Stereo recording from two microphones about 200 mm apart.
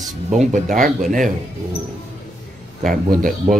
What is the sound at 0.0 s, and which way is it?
Speech, 35° right (ahead or behind).